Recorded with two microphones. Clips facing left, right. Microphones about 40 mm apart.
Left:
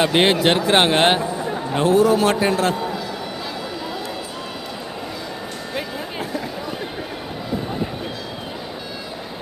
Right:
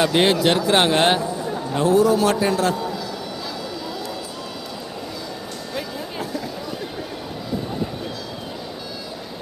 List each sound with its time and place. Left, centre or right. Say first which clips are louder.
0.0 s a man's voice: left 1 dB; left
5.8 s music: left 1 dB; left